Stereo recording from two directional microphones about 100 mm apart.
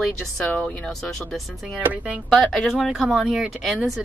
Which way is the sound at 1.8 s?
15° right (ahead or behind).